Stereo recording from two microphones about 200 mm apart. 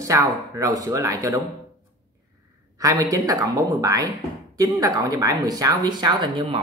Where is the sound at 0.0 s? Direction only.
15° right (ahead or behind).